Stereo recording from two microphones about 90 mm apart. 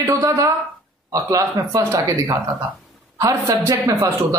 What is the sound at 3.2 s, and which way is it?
Speech, 35° right (ahead or behind).